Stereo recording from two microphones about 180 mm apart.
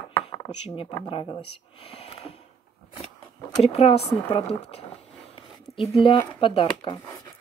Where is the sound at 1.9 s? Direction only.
35° left (ahead or behind).